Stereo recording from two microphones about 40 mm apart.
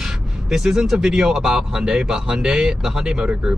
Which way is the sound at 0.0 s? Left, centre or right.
Centre.